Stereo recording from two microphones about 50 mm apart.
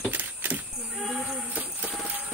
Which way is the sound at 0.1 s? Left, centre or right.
Right.